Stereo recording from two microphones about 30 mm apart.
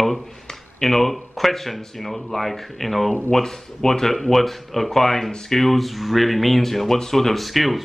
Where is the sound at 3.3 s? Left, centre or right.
Centre.